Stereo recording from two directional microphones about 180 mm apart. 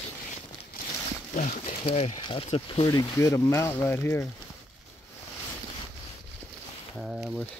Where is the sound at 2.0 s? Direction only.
30° left (ahead or behind); by 4.2 s 15° left (ahead or behind).